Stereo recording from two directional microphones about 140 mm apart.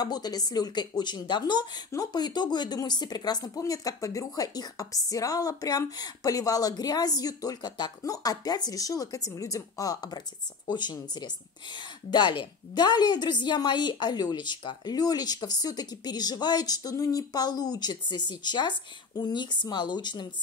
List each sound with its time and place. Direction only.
0.0 s speech: 30° left (ahead or behind)